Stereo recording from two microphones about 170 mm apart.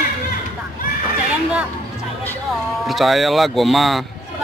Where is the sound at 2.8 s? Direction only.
Centre (ahead or behind).